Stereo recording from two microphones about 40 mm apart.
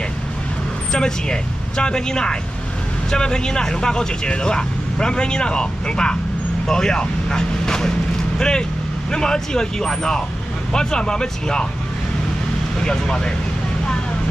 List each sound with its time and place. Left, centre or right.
0.9 s speech: left
12.8 s speech: centre